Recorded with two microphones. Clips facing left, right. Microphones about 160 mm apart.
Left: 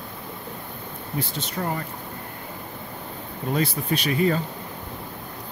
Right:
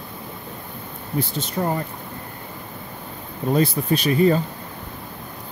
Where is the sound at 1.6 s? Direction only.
25° right (ahead or behind).